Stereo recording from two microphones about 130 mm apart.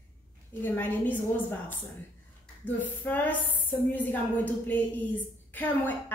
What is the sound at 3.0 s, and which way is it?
A woman's voice, 10° left (ahead or behind).